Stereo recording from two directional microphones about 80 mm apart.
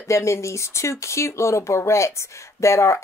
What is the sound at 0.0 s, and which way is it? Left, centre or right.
Speech, left.